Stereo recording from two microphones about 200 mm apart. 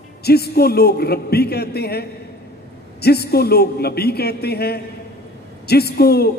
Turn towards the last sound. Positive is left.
turn(degrees=50)  # may be behind; listen again after turning